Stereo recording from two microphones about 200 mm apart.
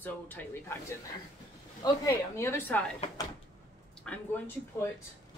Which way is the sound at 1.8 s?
15° left (ahead or behind).